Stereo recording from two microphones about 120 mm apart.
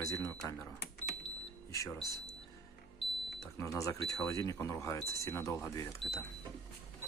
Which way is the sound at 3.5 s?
25° left (ahead or behind).